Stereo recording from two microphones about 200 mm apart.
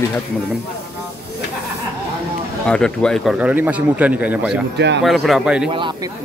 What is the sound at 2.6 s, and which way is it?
A man's voice, 5° left (ahead or behind).